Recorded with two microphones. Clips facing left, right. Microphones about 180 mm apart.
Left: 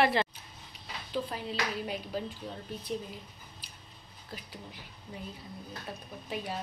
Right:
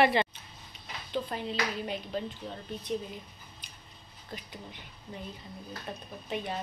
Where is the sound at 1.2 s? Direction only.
5° left (ahead or behind).